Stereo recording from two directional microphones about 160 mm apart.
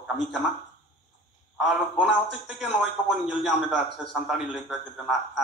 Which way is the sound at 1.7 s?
5° right (ahead or behind).